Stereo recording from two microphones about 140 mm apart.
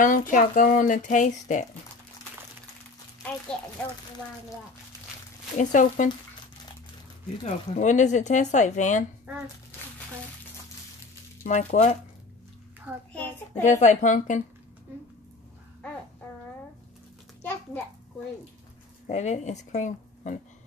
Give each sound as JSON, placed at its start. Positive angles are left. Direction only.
{"t": 0.0, "sound": "speech", "side_deg": 70}
{"t": 5.6, "sound": "speech", "side_deg": 65}
{"t": 7.4, "sound": "speech", "side_deg": 60}
{"t": 11.4, "sound": "speech", "side_deg": 60}
{"t": 13.1, "sound": "a sound", "side_deg": 10}
{"t": 13.7, "sound": "speech", "side_deg": 60}
{"t": 19.0, "sound": "speech", "side_deg": 55}